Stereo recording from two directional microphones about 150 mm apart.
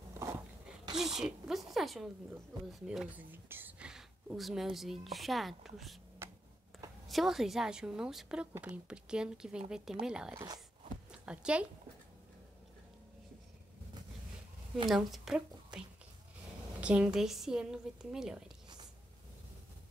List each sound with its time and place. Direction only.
0.2 s dog: 20° right (ahead or behind)
0.9 s speech: 5° right (ahead or behind)
6.7 s a sound: centre (ahead or behind)
7.1 s speech: centre (ahead or behind)
10.3 s speech: 25° right (ahead or behind)
11.1 s a sound: 5° right (ahead or behind)
14.9 s a woman's voice: centre (ahead or behind)
16.8 s speech: 10° right (ahead or behind)